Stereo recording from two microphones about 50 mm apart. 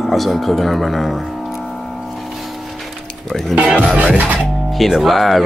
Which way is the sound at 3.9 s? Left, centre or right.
Right.